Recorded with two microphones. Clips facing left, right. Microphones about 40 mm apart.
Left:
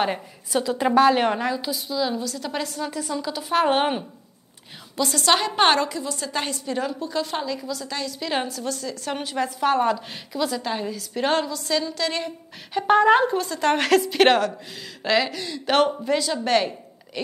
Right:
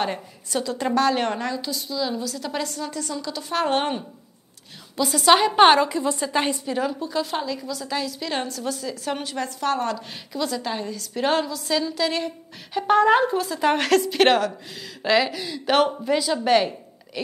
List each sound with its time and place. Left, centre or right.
0.0 s a woman's voice: centre
4.9 s a woman's voice: centre
5.9 s a woman's voice: right
6.6 s a woman's voice: centre